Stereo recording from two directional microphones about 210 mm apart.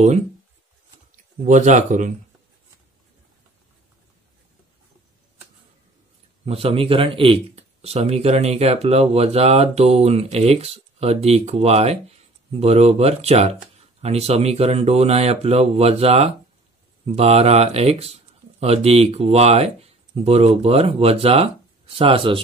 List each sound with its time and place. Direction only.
1.4 s speech: 35° right (ahead or behind)
6.4 s speech: 25° right (ahead or behind)